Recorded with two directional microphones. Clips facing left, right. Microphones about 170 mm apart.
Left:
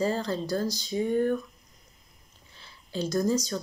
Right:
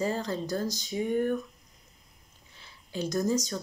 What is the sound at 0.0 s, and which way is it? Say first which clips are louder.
A woman's voice: left 2 dB; 15° right (ahead or behind).